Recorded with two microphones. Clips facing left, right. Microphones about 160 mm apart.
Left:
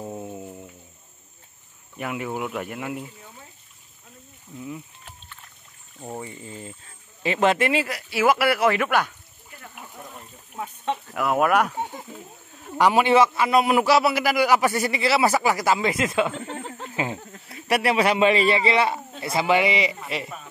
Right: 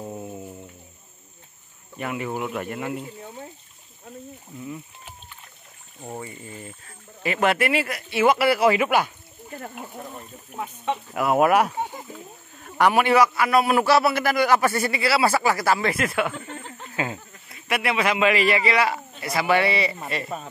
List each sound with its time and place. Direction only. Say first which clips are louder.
0.3 s music: even; 5° left (ahead or behind)
2.0 s speech: right 1 dB; 5° left (ahead or behind)
6.2 s speech: left 1 dB; 20° left (ahead or behind); by 9.1 s 10° right (ahead or behind)
9.5 s a sound: right 8 dB; 45° right (ahead or behind)
11.3 s speech: right 2 dB; 5° right (ahead or behind)
12.6 s a man's voice: even; 15° left (ahead or behind)
17.5 s a man's voice: left 3 dB; 35° left (ahead or behind); by 20.0 s 15° left (ahead or behind)